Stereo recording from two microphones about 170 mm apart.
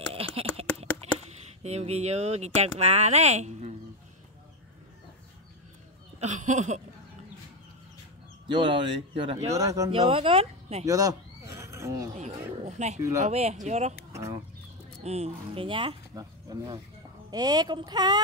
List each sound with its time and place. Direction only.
0.1 s typing: 35° right (ahead or behind)
1.6 s speech: 40° right (ahead or behind)
6.1 s speech: 45° right (ahead or behind)
8.5 s speech: 30° right (ahead or behind)
9.5 s speech: 20° right (ahead or behind)
9.8 s speech: 30° right (ahead or behind)
10.9 s a sound: 20° right (ahead or behind)
12.2 s speech: 45° right (ahead or behind)
14.1 s speech: 15° right (ahead or behind)
15.0 s speech: 40° right (ahead or behind)